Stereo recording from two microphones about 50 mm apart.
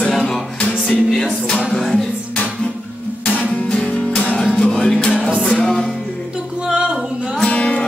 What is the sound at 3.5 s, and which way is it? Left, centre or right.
Music, left.